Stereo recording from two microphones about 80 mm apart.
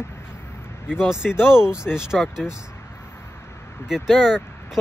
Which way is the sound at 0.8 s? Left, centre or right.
Centre.